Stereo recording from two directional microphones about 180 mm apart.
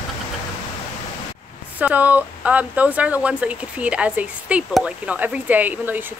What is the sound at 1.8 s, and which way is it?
Speech, 10° right (ahead or behind).